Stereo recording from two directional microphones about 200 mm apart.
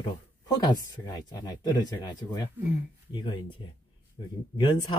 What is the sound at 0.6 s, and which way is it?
Speech, 20° left (ahead or behind).